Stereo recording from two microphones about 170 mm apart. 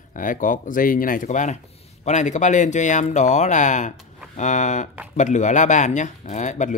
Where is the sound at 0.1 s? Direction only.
50° left (ahead or behind).